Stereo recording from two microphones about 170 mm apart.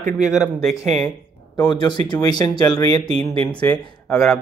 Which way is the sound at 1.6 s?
25° left (ahead or behind).